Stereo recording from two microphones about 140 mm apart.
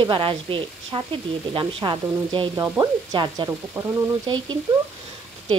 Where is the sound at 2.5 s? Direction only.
25° right (ahead or behind).